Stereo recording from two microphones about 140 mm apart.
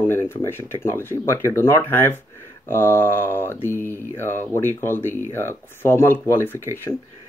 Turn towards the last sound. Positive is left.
turn(degrees=15)  # may be behind; listen again after turning